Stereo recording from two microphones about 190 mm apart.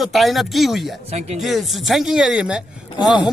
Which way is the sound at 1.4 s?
Centre (ahead or behind).